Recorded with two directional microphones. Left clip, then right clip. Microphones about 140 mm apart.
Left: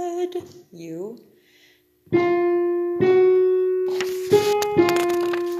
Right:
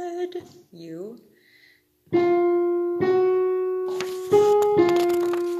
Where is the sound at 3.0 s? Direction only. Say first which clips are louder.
Left 6 dB; 25° left (ahead or behind).